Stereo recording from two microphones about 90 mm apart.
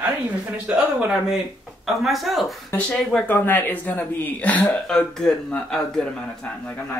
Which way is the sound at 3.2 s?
20° left (ahead or behind).